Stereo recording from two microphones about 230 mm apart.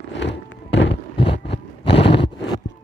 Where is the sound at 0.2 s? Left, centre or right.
Left.